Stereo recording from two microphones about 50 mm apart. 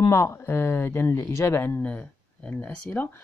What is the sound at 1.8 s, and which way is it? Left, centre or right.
Speech, left.